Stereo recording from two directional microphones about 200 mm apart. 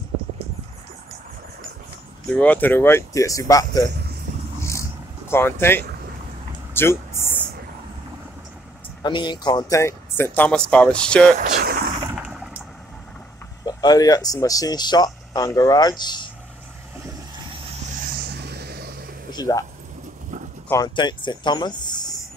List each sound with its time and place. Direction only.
2.3 s speech: 5° left (ahead or behind)
5.3 s speech: 10° left (ahead or behind)
6.7 s vehicle: 10° left (ahead or behind)
9.0 s speech: 20° left (ahead or behind); by 11.3 s 5° left (ahead or behind)
11.3 s a sound: 40° right (ahead or behind)
12.2 s a sound: 5° right (ahead or behind)
13.7 s speech: 20° left (ahead or behind)
18.4 s vehicle: 55° right (ahead or behind)
19.3 s a sound: 20° left (ahead or behind)
20.6 s speech: 15° left (ahead or behind)